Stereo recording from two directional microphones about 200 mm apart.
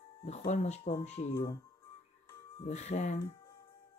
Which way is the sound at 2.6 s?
35° left (ahead or behind).